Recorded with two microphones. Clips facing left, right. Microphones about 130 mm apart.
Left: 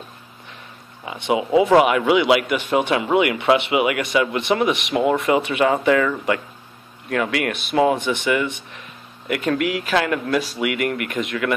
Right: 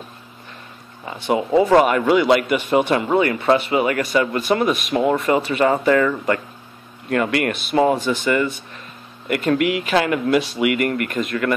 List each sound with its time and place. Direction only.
1.0 s speech: 20° left (ahead or behind)
1.3 s speech: 5° left (ahead or behind)
2.4 s speech: 5° right (ahead or behind)
8.0 s speech: 15° left (ahead or behind)
9.3 s speech: 5° right (ahead or behind)